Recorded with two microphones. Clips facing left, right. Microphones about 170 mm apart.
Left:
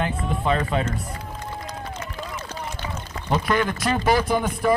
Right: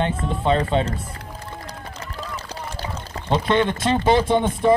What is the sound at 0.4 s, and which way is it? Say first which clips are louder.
A man's voice: right 4 dB; 30° right (ahead or behind).